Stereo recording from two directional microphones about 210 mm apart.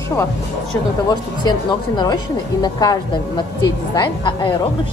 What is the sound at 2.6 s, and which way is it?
A woman's voice, 20° left (ahead or behind).